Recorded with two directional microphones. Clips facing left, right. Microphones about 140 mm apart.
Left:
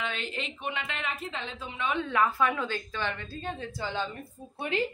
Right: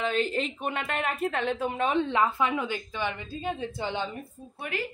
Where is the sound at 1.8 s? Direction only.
35° right (ahead or behind); by 4.2 s 15° right (ahead or behind).